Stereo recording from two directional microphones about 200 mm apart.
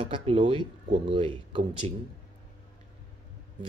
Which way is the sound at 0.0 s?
25° right (ahead or behind).